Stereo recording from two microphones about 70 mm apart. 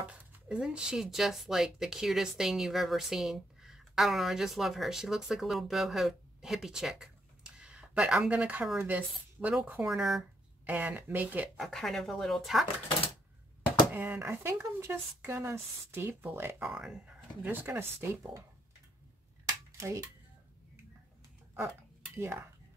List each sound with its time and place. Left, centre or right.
0.0 s speech: centre
9.8 s speech: centre
10.6 s speech: right
11.5 s speech: centre
13.9 s speech: right
16.6 s speech: centre
17.5 s speech: right
22.1 s speech: right